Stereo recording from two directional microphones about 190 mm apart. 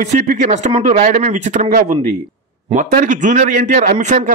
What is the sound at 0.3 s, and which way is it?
A man's voice, 40° right (ahead or behind).